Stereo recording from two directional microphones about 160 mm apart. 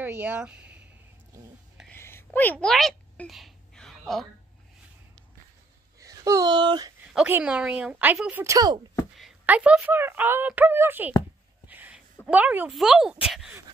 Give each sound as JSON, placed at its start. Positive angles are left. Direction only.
{"t": 0.0, "sound": "speech", "side_deg": -10}
{"t": 1.9, "sound": "a sound", "side_deg": 15}
{"t": 5.9, "sound": "speech", "side_deg": -20}
{"t": 7.2, "sound": "a woman's voice", "side_deg": -10}
{"t": 9.1, "sound": "speech", "side_deg": -5}
{"t": 11.6, "sound": "a sound", "side_deg": -10}
{"t": 12.3, "sound": "speech", "side_deg": -10}